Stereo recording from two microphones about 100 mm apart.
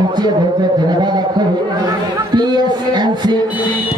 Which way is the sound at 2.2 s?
45° right (ahead or behind).